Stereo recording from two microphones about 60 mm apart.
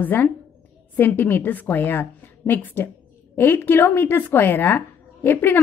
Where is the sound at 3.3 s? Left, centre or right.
Left.